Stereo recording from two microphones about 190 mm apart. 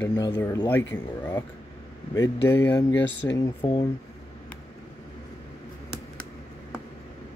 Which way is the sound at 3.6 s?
30° left (ahead or behind).